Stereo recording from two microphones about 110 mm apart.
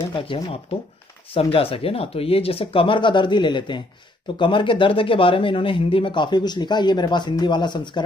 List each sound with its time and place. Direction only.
0.1 s speech: 50° left (ahead or behind)